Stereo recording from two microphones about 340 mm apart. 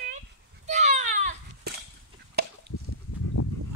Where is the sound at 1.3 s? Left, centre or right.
Right.